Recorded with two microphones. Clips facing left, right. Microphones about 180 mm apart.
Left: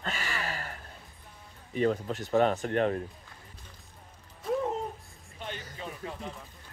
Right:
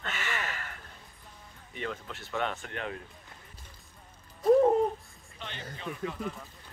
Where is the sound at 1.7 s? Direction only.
40° left (ahead or behind).